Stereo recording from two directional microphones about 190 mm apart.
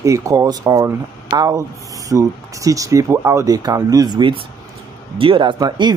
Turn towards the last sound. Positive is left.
turn(degrees=-20)  # may be behind; listen again after turning